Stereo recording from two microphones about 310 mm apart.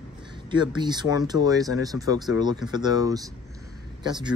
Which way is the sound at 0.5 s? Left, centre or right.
Centre.